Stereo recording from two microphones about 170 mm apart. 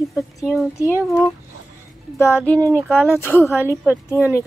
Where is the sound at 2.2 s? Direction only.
15° left (ahead or behind).